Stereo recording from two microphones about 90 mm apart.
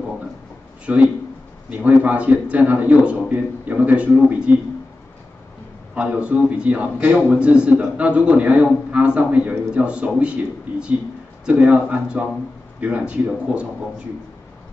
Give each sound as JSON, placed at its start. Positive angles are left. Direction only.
{"t": 0.9, "sound": "a man's voice", "side_deg": -15}
{"t": 5.9, "sound": "a man's voice", "side_deg": -15}